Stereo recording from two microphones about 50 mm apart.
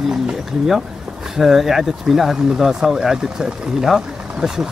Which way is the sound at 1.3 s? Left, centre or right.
Centre.